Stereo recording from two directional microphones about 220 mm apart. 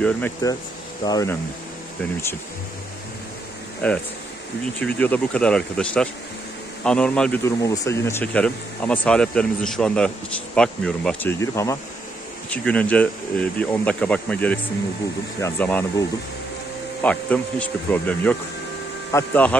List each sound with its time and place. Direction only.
0.0 s speech: 10° left (ahead or behind)
3.8 s speech: 5° left (ahead or behind)
7.6 s speech: 15° left (ahead or behind)
17.0 s speech: 5° left (ahead or behind)